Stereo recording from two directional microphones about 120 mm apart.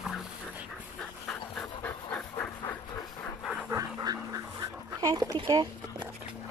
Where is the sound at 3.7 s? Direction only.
30° right (ahead or behind).